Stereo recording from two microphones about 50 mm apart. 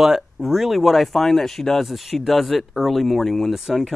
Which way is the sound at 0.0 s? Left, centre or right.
Centre.